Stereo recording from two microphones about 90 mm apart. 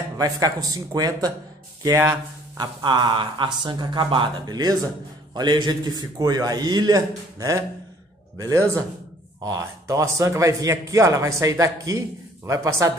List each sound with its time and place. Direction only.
0.2 s a man's voice: 45° right (ahead or behind)
2.8 s a man's voice: 60° right (ahead or behind); by 12.9 s 35° right (ahead or behind)